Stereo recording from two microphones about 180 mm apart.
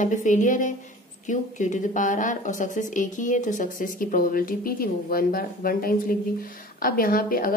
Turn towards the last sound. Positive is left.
turn(degrees=55)  # may be behind; listen again after turning